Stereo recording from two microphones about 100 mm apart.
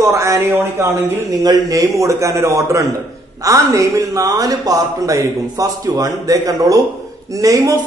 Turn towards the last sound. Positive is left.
turn(degrees=-35)  # may be behind; listen again after turning